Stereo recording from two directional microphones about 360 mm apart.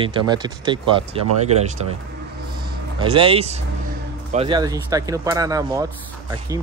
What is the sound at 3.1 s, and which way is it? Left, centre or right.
Speech, centre.